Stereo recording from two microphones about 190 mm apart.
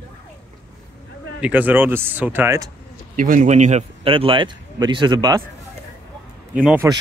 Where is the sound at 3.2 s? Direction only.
40° right (ahead or behind); by 5.4 s 20° right (ahead or behind).